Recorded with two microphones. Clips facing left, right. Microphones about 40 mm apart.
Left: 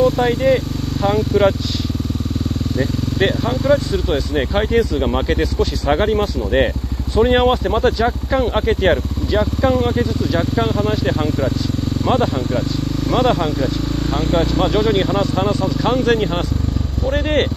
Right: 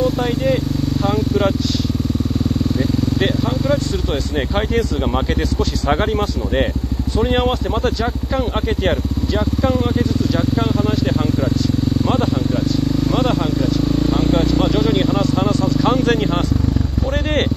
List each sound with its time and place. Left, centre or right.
0.0 s speech: centre
3.2 s speech: centre
13.1 s speech: centre
14.1 s vehicle: left
14.7 s speech: centre